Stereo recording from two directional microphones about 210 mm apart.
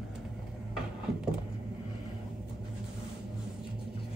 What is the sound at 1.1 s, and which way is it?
Vehicle, 5° right (ahead or behind).